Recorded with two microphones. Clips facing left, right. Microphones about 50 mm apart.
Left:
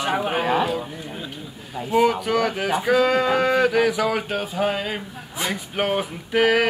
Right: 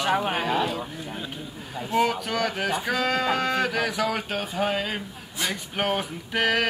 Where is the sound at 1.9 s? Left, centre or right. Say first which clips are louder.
Left 5 dB; centre.